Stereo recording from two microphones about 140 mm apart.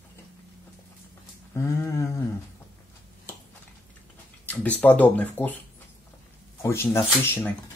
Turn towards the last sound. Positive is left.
turn(degrees=15)  # may be behind; listen again after turning